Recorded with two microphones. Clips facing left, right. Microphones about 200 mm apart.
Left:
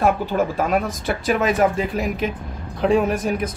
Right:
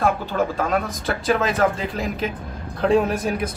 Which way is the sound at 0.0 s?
15° left (ahead or behind).